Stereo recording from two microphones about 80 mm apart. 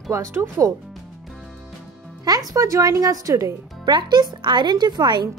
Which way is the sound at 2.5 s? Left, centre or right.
Right.